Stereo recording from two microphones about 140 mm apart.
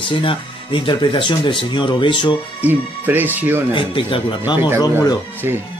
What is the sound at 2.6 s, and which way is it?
Speech, 15° right (ahead or behind).